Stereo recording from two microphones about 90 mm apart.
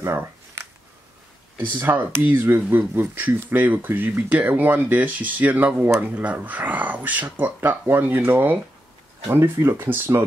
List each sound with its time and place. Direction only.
0.0 s shuffling cards: 30° right (ahead or behind)
1.8 s speech: 25° right (ahead or behind)